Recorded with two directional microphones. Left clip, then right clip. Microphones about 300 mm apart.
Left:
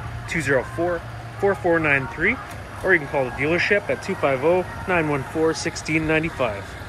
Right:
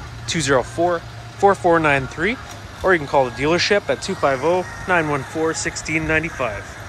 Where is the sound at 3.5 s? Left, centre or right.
Centre.